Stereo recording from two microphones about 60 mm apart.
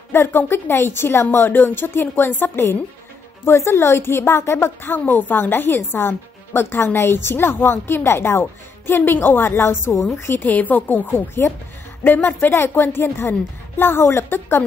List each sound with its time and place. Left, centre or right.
0.1 s speech: left
3.4 s a woman's voice: left
10.3 s speech: left